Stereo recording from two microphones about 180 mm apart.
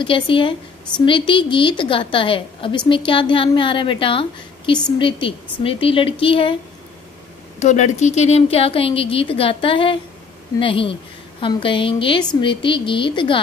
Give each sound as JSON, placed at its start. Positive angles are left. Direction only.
{"t": 0.0, "sound": "a woman's voice", "side_deg": 30}
{"t": 7.5, "sound": "a woman's voice", "side_deg": 40}